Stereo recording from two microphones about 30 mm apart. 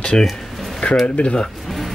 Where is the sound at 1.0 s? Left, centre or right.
Left.